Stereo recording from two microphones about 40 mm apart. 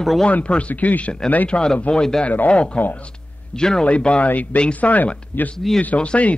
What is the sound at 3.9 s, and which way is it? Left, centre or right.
Speech, left.